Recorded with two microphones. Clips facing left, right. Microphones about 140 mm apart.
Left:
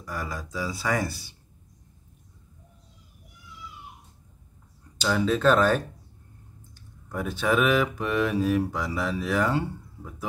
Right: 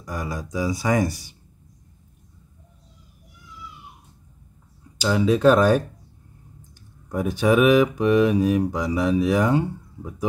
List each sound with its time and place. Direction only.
0.0 s speech: 15° right (ahead or behind)
4.9 s speech: 10° right (ahead or behind)
7.1 s speech: 15° right (ahead or behind)